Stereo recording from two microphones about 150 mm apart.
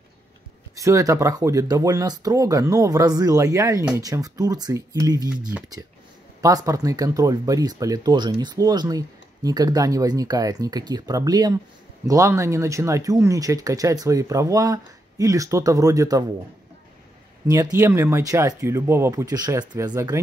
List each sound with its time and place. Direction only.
0.7 s speech: 20° right (ahead or behind)
17.7 s speech: 15° right (ahead or behind)